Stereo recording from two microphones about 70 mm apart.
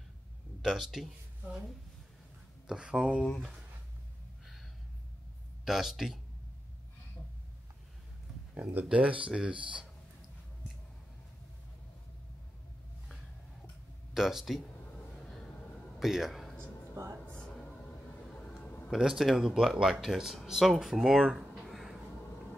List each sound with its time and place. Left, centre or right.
0.6 s speech: centre
2.6 s speech: centre
5.7 s speech: centre
8.8 s speech: centre
14.1 s speech: centre
15.0 s a sound: centre
16.0 s a man's voice: centre
17.0 s speech: right
17.3 s music: centre
18.3 s a sound: centre
18.9 s speech: centre